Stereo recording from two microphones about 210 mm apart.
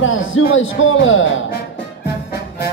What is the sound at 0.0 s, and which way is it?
A man's voice, 70° left (ahead or behind).